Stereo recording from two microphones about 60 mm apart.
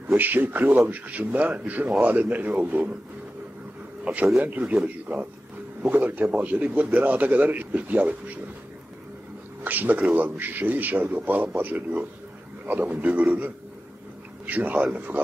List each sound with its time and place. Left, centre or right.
0.1 s a man's voice: right
4.0 s a man's voice: right
9.6 s a man's voice: right